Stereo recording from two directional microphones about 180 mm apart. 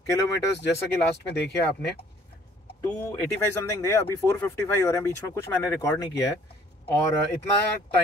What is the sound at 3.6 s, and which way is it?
Speech, 15° left (ahead or behind).